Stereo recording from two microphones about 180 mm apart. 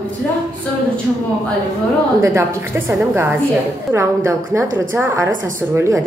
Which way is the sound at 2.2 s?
15° right (ahead or behind).